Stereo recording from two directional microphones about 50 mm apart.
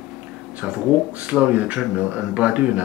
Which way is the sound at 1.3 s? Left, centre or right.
Right.